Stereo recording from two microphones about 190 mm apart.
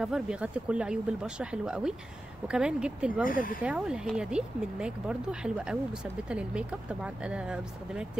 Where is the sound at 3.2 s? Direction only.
45° left (ahead or behind).